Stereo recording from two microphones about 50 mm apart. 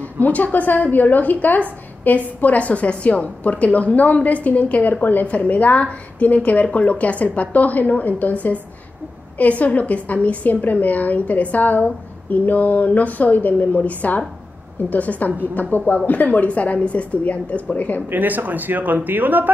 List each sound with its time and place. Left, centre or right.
0.0 s a woman's voice: left
18.1 s speech: right